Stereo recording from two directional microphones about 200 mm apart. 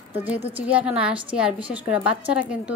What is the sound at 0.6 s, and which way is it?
A woman's voice, 5° right (ahead or behind).